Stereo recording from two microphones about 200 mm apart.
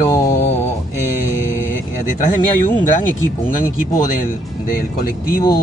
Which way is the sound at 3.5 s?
40° left (ahead or behind).